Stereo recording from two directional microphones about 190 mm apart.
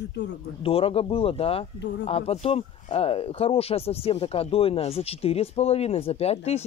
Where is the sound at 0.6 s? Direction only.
30° left (ahead or behind).